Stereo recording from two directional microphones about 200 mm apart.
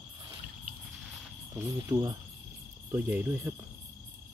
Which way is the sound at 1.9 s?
20° right (ahead or behind).